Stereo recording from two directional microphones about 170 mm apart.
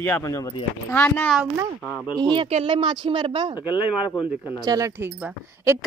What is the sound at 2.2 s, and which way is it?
Speech, 30° right (ahead or behind).